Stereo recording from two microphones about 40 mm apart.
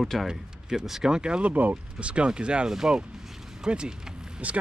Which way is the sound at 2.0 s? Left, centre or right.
Right.